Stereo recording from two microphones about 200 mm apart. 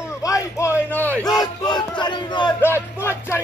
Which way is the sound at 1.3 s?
20° left (ahead or behind).